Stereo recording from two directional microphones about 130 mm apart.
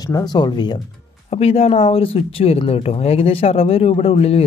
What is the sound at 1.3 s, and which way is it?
Speech, 50° left (ahead or behind).